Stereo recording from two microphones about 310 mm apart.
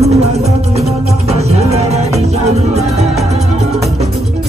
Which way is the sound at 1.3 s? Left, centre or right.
Right.